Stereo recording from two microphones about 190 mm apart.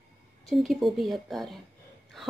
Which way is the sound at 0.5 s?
Centre (ahead or behind).